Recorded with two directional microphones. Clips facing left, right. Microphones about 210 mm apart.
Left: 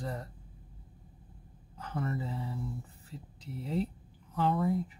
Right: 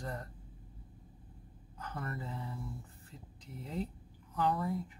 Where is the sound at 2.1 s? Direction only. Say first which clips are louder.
Left 5 dB; 30° left (ahead or behind).